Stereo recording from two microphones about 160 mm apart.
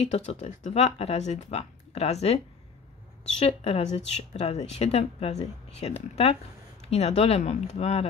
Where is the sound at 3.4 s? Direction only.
40° left (ahead or behind).